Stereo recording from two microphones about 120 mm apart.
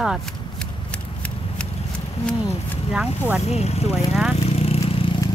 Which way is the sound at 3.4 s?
60° left (ahead or behind).